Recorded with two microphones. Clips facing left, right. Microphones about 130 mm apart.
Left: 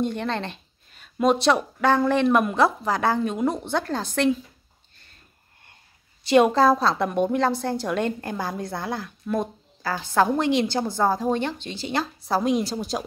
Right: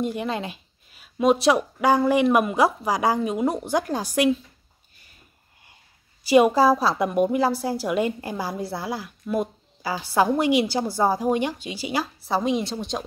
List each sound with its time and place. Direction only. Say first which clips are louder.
0.0 s a woman's voice: even; 5° right (ahead or behind)
6.2 s a woman's voice: right 1 dB; 5° right (ahead or behind)